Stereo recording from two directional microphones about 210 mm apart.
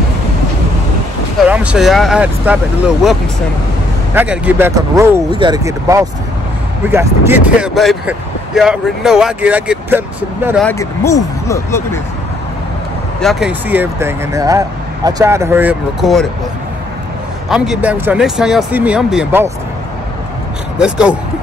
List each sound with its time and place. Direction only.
1.4 s speech: 5° right (ahead or behind)
10.6 s speech: 10° left (ahead or behind)
13.2 s speech: centre (ahead or behind)
17.5 s speech: 5° right (ahead or behind)
20.7 s speech: 5° right (ahead or behind)